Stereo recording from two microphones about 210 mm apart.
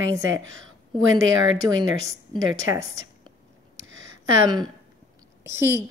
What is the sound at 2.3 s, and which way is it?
Speech, 15° right (ahead or behind).